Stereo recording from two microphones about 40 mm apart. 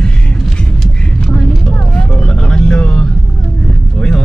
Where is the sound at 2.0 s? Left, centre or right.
Left.